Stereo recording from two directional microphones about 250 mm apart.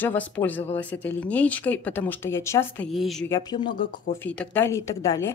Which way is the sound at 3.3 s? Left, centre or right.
Centre.